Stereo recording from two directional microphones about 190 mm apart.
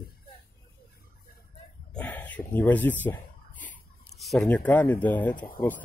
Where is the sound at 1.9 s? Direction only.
10° left (ahead or behind).